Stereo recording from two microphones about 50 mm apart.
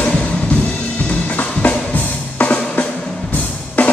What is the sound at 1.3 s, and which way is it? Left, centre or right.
Music, left.